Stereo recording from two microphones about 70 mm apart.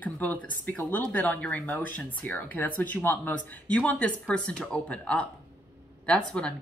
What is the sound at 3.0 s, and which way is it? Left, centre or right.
Speech, left.